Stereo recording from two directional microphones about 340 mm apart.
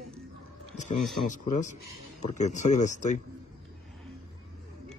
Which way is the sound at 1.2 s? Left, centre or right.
Left.